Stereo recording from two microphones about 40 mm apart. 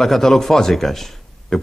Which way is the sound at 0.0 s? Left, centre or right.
Centre.